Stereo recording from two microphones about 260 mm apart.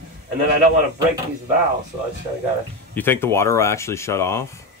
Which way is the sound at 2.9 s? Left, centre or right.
Centre.